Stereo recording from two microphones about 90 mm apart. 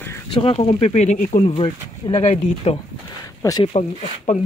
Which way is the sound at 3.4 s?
35° left (ahead or behind).